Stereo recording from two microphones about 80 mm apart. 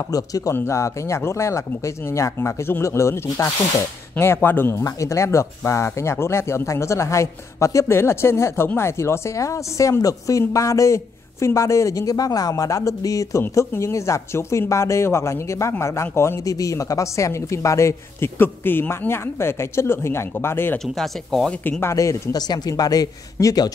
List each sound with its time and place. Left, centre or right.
0.1 s speech: left
20.8 s speech: centre
21.8 s speech: left
22.3 s speech: left